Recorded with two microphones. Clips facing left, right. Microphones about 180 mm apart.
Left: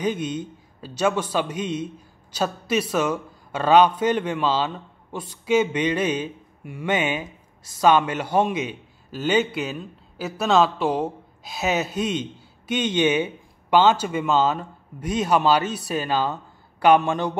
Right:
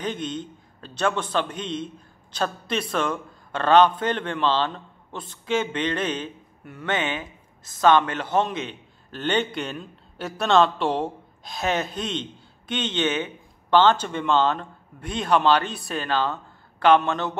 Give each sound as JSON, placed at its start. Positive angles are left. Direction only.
{"t": 0.0, "sound": "speech", "side_deg": 10}